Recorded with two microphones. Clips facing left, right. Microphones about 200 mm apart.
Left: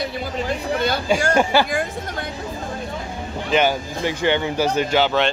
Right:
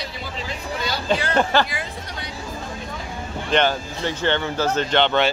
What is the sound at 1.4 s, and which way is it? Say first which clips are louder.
Speech: left 1 dB; 10° left (ahead or behind).